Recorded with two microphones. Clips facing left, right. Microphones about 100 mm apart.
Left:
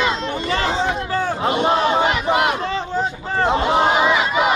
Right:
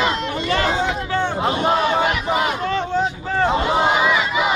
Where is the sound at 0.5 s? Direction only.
30° left (ahead or behind).